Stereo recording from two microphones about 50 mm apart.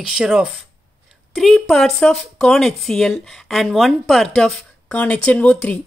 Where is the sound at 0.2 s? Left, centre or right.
Centre.